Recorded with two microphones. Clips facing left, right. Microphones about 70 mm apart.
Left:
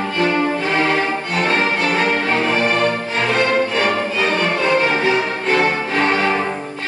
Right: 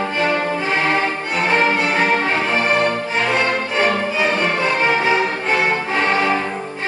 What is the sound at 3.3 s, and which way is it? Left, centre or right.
Music, right.